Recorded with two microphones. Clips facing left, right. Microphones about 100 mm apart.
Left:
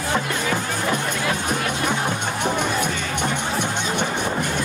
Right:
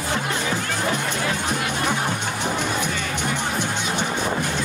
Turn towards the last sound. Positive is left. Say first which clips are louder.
# left 1 dB
turn(degrees=55)  # may be behind; listen again after turning